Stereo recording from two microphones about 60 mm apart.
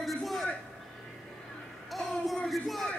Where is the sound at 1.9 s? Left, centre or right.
Centre.